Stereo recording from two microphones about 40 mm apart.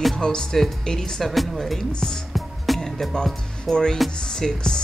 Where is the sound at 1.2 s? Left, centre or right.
Centre.